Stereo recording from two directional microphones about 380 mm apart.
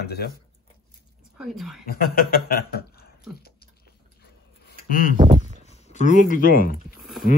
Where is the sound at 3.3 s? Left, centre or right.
Left.